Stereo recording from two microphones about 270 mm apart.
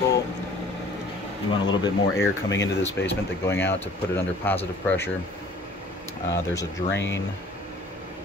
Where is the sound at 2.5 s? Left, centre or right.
Left.